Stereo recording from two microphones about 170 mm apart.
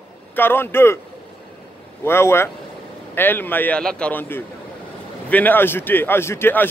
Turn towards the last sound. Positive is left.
turn(degrees=10)  # may be behind; listen again after turning